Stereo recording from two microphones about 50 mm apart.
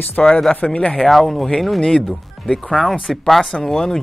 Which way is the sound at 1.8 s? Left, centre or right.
Centre.